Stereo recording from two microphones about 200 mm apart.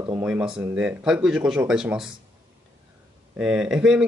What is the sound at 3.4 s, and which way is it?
Speech, 5° right (ahead or behind).